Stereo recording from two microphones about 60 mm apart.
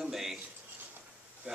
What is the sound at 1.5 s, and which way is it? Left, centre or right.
Speech, centre.